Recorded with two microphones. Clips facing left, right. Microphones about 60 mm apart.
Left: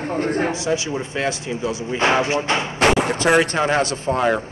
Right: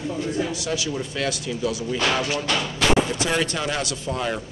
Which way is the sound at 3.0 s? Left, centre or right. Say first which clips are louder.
Left 6 dB; left.